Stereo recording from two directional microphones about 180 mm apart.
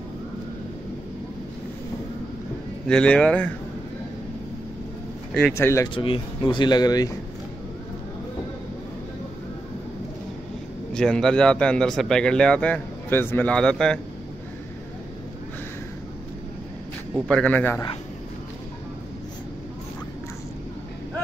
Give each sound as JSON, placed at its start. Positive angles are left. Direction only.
{"t": 2.9, "sound": "a man's voice", "side_deg": 5}
{"t": 5.5, "sound": "speech", "side_deg": 15}
{"t": 5.9, "sound": "speech", "side_deg": 30}
{"t": 10.9, "sound": "a man's voice", "side_deg": 5}
{"t": 17.3, "sound": "speech", "side_deg": 5}